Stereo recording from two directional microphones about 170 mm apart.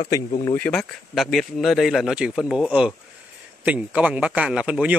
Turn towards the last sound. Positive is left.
turn(degrees=-5)  # may be behind; listen again after turning